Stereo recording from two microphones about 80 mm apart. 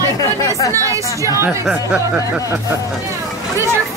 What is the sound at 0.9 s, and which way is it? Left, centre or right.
Speech, right.